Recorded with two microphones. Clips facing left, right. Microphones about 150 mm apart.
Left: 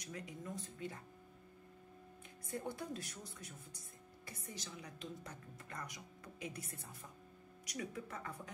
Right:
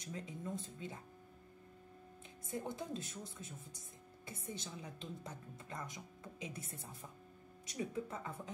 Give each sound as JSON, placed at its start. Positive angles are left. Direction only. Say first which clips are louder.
{"t": 0.0, "sound": "a woman's voice", "louder": "right 2 dB", "side_deg": -25}
{"t": 2.5, "sound": "a woman's voice", "louder": "right 1 dB", "side_deg": -20}